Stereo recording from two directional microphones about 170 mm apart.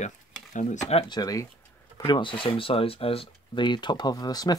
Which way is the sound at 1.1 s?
20° left (ahead or behind).